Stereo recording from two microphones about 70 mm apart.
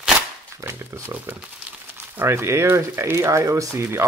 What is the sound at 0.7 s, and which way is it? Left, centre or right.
Speech, right.